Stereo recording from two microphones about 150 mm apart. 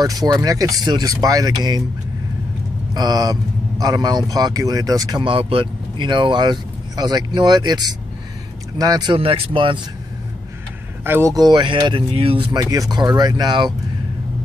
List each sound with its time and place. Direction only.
0.0 s speech: 25° right (ahead or behind)
2.9 s speech: 25° right (ahead or behind)
11.1 s speech: 20° right (ahead or behind); by 12.4 s 40° right (ahead or behind)
12.5 s speech: 25° right (ahead or behind)